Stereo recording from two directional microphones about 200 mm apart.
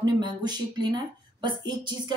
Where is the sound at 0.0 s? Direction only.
20° right (ahead or behind).